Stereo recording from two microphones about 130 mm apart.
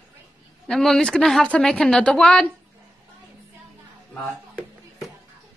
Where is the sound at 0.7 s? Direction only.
Centre (ahead or behind).